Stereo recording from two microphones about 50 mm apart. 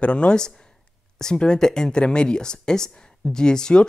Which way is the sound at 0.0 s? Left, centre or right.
Left.